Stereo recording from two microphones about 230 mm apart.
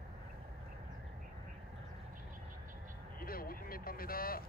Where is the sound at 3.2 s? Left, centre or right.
Left.